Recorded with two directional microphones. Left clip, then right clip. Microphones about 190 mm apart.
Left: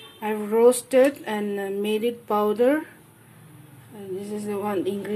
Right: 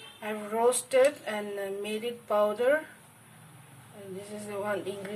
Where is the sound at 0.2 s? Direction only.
40° left (ahead or behind).